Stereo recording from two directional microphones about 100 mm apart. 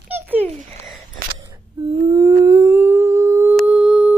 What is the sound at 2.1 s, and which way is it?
Humming, 40° right (ahead or behind).